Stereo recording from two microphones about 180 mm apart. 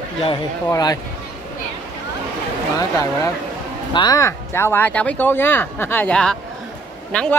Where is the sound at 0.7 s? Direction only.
20° left (ahead or behind).